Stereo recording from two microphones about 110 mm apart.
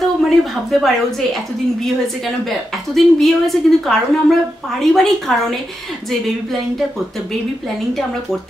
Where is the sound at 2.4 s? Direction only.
Centre (ahead or behind).